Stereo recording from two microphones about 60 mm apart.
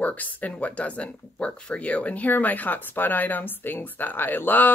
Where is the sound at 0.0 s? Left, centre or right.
Left.